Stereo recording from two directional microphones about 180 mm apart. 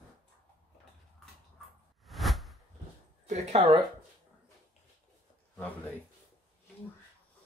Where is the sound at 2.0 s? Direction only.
Centre (ahead or behind).